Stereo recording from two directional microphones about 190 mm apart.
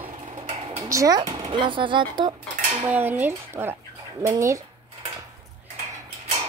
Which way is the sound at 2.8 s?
10° right (ahead or behind).